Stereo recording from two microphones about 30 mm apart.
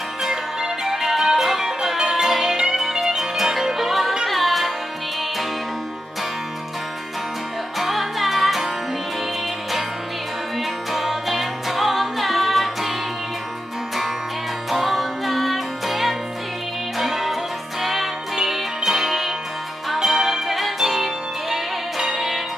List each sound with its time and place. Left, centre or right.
0.2 s music: centre
7.8 s music: centre
10.6 s music: centre
14.7 s music: centre